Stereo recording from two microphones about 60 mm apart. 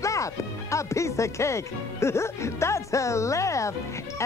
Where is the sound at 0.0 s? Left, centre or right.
Left.